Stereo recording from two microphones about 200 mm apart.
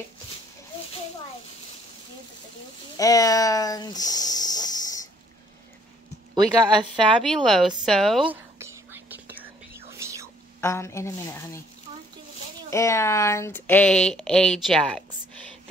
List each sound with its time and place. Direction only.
3.0 s speech: 15° left (ahead or behind)
6.3 s speech: 25° right (ahead or behind)
7.4 s whispering: centre (ahead or behind)
10.6 s speech: 15° left (ahead or behind)
12.6 s speech: 15° left (ahead or behind)